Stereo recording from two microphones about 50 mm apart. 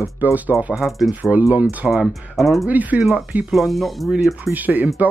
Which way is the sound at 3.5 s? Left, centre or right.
Centre.